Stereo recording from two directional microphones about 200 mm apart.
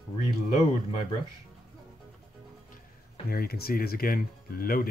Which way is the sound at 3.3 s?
50° left (ahead or behind).